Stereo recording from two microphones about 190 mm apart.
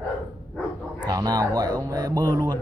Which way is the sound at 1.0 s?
20° right (ahead or behind).